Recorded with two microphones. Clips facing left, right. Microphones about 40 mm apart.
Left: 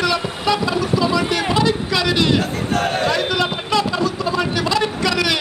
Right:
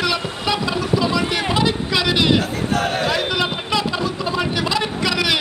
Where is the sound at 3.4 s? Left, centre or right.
Right.